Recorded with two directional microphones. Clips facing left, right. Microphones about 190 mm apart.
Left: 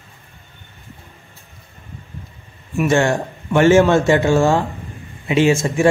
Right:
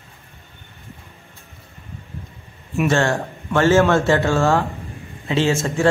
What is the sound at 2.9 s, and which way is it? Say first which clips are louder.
Speech: left 5 dB; 15° left (ahead or behind).